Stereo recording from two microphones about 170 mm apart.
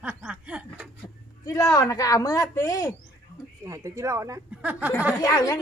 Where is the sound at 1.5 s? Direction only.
20° left (ahead or behind).